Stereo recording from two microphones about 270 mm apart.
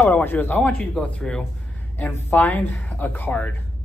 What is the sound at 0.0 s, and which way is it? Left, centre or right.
Speech, centre.